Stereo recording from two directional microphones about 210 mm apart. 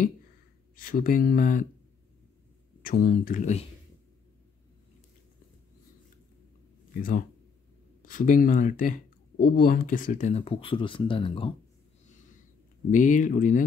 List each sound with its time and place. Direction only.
0.7 s speech: 40° left (ahead or behind)
2.8 s speech: 40° left (ahead or behind)
6.9 s speech: 40° left (ahead or behind); by 11.5 s 25° left (ahead or behind)
12.9 s speech: 35° left (ahead or behind)